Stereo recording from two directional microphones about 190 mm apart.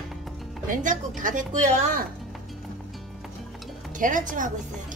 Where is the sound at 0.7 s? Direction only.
45° right (ahead or behind).